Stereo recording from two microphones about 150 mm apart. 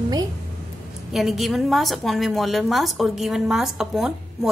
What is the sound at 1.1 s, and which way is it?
A woman's voice, centre (ahead or behind).